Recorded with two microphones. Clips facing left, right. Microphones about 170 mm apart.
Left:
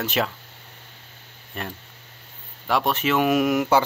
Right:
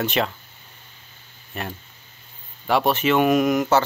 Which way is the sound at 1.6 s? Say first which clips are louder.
Right 2 dB; 5° right (ahead or behind).